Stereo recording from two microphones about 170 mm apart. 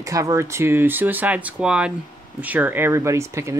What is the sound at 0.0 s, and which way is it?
Speech, 20° right (ahead or behind).